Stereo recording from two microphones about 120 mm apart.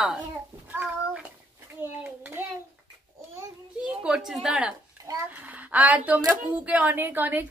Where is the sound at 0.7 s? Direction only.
15° right (ahead or behind).